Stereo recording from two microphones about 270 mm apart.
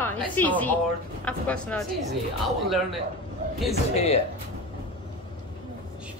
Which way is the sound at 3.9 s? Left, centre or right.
Left.